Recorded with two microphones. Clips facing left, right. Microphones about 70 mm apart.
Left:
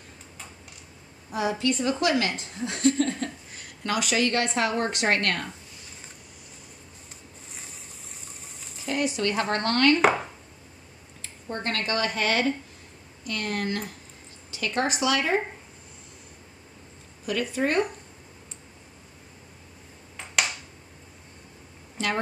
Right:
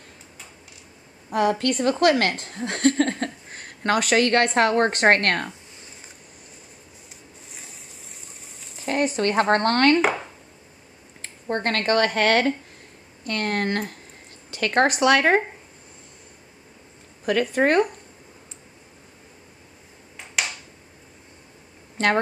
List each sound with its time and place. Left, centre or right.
1.3 s a woman's voice: right
8.8 s speech: right
9.9 s speech: centre
11.4 s a woman's voice: right
17.3 s a woman's voice: right
20.4 s a sound: centre
21.9 s a sound: right